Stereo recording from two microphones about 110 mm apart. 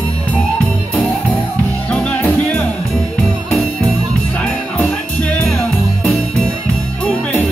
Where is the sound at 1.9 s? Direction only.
10° left (ahead or behind).